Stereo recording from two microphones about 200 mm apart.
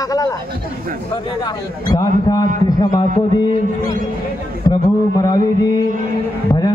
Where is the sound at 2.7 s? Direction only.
20° left (ahead or behind).